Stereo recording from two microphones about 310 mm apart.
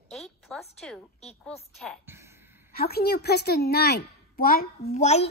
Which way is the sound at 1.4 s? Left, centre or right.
Centre.